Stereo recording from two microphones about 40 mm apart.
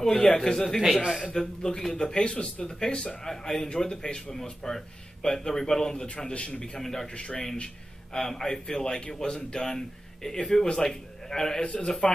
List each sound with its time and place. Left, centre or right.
0.0 s a man's voice: centre
0.7 s a man's voice: centre
1.4 s a man's voice: centre
3.3 s a man's voice: centre
6.2 s a man's voice: left
6.6 s a man's voice: centre
7.2 s a man's voice: left
11.6 s a man's voice: left